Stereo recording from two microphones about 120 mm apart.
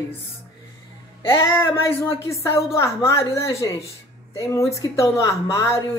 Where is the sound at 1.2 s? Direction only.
20° left (ahead or behind).